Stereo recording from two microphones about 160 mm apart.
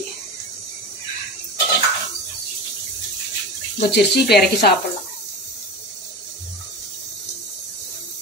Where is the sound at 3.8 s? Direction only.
90° left.